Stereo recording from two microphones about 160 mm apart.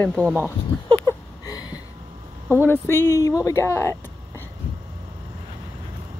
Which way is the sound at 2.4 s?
15° left (ahead or behind).